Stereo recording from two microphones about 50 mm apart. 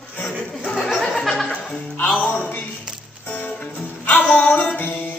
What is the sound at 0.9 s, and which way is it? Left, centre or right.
Music, centre.